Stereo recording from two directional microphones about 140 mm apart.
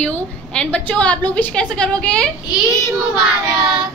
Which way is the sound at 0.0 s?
5° left (ahead or behind).